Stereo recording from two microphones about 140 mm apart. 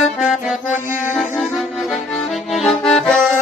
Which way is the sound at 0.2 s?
5° right (ahead or behind).